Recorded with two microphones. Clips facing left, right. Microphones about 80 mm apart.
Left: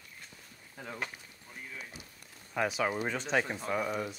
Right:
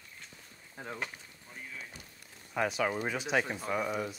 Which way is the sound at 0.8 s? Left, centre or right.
Right.